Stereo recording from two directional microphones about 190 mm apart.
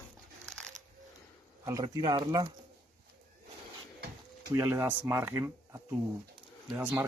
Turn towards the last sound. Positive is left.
turn(degrees=-10)  # may be behind; listen again after turning